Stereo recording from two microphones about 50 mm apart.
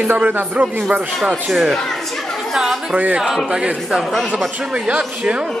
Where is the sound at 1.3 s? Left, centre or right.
Centre.